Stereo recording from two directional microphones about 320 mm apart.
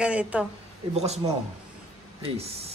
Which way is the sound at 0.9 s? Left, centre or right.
Centre.